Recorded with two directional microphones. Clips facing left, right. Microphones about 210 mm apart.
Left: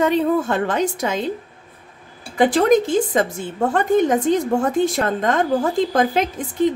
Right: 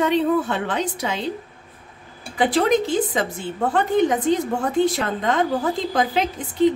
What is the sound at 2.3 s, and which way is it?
A woman's voice, 45° left (ahead or behind).